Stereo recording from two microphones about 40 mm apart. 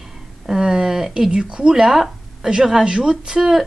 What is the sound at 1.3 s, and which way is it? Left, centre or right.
Speech, right.